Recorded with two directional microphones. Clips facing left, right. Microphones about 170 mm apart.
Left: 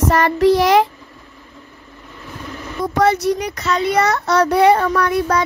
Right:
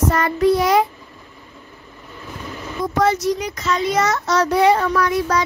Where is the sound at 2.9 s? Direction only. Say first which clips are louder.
Left 2 dB; 65° left (ahead or behind).